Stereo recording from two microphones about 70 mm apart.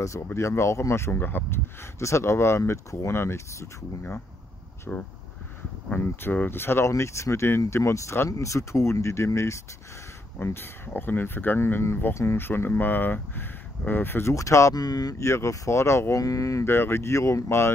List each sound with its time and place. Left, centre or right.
0.0 s speech: left
2.0 s speech: left
4.9 s speech: centre
5.9 s speech: left
6.9 s speech: left
14.3 s speech: left
14.8 s speech: left
15.1 s speech: left
16.2 s speech: left
16.6 s speech: left